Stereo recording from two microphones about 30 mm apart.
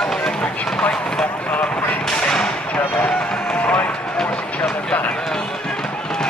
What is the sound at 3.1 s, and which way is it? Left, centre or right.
Run, left.